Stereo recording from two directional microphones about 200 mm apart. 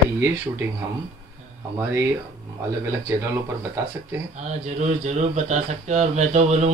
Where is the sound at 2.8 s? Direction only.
10° right (ahead or behind).